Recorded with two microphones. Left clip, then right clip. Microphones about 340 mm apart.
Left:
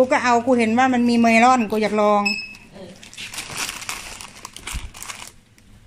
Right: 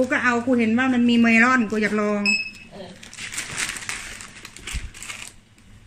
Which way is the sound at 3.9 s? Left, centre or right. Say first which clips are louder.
Even; centre.